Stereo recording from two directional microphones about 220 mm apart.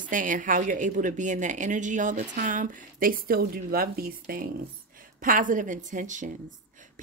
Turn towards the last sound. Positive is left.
turn(degrees=-35)  # may be behind; listen again after turning